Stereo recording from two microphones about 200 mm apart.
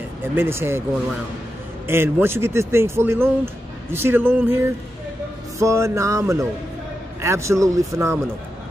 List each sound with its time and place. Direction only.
0.2 s a man's voice: 10° right (ahead or behind)
1.9 s a man's voice: 10° right (ahead or behind)
5.6 s a man's voice: 15° right (ahead or behind)